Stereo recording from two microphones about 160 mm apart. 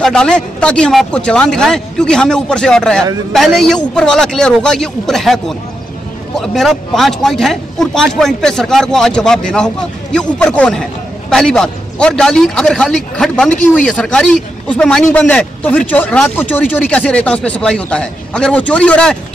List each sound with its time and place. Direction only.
0.0 s a man's voice: 5° left (ahead or behind)